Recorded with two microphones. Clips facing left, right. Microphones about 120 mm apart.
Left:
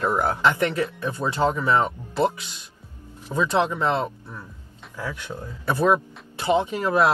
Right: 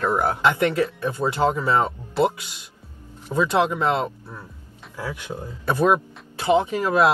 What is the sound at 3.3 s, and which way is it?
Speech, 20° right (ahead or behind).